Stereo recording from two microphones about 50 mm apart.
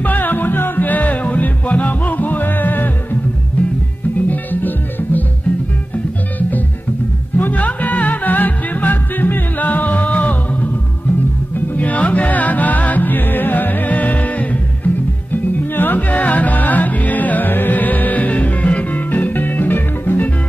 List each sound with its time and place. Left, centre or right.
0.0 s music: left
4.3 s music: left
7.3 s music: left